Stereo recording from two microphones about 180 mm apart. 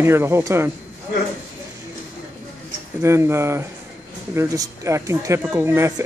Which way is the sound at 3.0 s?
15° right (ahead or behind).